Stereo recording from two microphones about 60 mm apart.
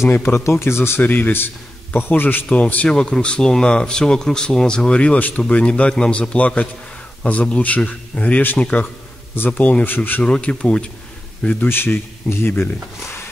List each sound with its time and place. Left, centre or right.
0.0 s speech: left
1.0 s a man's voice: left
2.5 s a man's voice: left
10.2 s speech: centre
11.6 s a man's voice: left